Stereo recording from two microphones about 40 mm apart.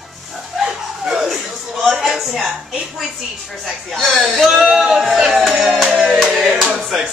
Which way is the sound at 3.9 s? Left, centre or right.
Centre.